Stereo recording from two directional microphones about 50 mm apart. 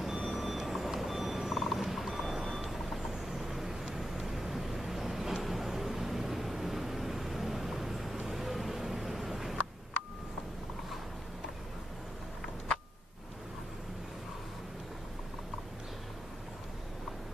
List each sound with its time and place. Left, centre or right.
0.0 s vehicle: centre